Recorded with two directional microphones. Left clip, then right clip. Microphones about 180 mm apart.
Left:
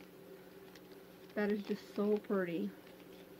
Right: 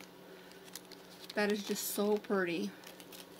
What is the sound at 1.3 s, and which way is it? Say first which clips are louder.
Speech: right 3 dB; 10° right (ahead or behind).